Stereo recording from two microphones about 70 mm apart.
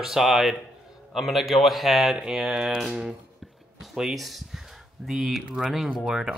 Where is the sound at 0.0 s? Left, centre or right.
Centre.